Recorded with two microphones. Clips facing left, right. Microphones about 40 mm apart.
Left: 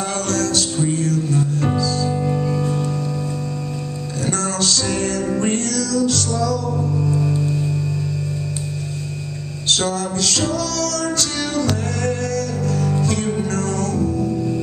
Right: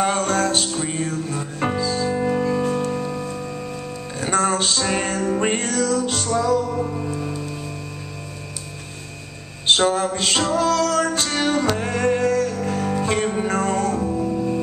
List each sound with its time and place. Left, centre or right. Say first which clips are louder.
0.0 s music: right 2 dB; right
4.3 s music: right 2 dB; right
7.0 s music: left 6 dB; right
9.7 s music: right 3 dB; right